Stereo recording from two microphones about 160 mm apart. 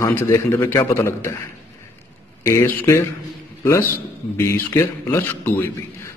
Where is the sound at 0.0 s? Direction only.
15° left (ahead or behind).